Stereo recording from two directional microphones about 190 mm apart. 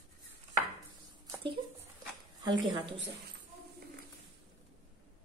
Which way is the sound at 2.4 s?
25° right (ahead or behind).